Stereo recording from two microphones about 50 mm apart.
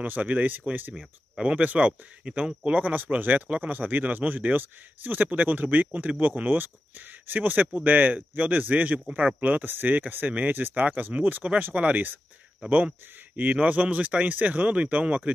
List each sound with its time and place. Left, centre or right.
0.0 s speech: right
1.4 s speech: right